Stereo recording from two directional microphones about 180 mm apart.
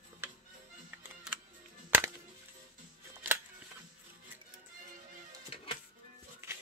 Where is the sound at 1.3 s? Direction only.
5° right (ahead or behind).